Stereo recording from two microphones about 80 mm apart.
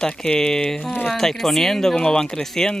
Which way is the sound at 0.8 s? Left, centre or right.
Left.